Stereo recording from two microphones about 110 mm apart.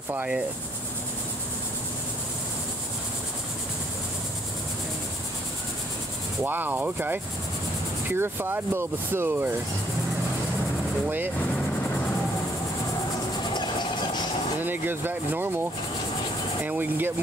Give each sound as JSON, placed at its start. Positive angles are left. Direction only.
{"t": 0.1, "sound": "speech", "side_deg": -10}
{"t": 6.4, "sound": "speech", "side_deg": -15}
{"t": 13.4, "sound": "music", "side_deg": 40}
{"t": 14.6, "sound": "speech", "side_deg": -20}
{"t": 16.6, "sound": "speech", "side_deg": -15}